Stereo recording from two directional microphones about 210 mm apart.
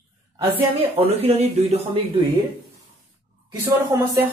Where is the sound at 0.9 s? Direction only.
30° right (ahead or behind).